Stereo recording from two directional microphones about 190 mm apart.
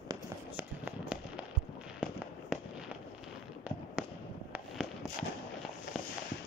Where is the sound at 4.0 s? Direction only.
5° right (ahead or behind).